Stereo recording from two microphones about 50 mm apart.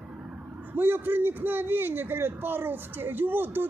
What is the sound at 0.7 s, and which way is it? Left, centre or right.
A man's voice, right.